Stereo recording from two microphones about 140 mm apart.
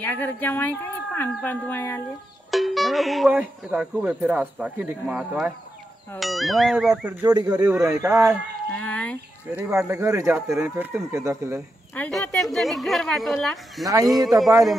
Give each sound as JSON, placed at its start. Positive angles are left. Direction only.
{"t": 0.0, "sound": "speech", "side_deg": 15}
{"t": 2.5, "sound": "music", "side_deg": 0}
{"t": 3.3, "sound": "a woman's voice", "side_deg": -10}
{"t": 7.2, "sound": "speech", "side_deg": -30}
{"t": 8.7, "sound": "a sound", "side_deg": 10}
{"t": 9.8, "sound": "speech", "side_deg": -20}
{"t": 12.1, "sound": "a woman's voice", "side_deg": 0}